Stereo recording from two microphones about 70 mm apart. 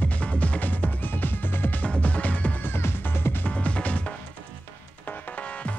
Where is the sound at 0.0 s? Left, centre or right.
Centre.